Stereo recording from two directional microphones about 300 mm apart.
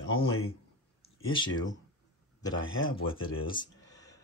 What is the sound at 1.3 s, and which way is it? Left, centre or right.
Speech, centre.